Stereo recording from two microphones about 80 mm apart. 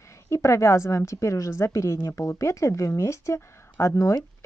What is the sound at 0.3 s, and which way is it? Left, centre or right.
Speech, left.